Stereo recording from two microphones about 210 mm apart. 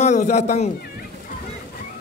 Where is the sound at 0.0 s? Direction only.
35° left (ahead or behind).